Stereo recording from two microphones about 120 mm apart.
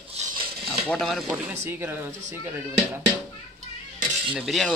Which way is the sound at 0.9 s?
Centre (ahead or behind).